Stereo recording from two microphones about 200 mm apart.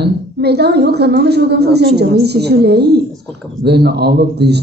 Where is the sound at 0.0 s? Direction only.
55° right (ahead or behind).